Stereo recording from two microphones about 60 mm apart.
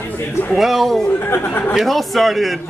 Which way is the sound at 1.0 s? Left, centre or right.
Left.